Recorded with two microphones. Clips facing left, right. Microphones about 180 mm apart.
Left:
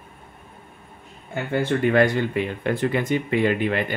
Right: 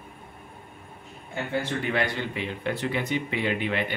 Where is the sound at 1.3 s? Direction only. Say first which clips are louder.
Left 6 dB; 50° left (ahead or behind).